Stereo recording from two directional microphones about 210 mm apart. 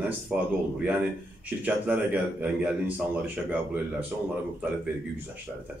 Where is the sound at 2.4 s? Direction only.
5° right (ahead or behind).